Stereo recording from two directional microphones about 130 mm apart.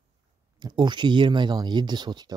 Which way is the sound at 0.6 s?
35° right (ahead or behind).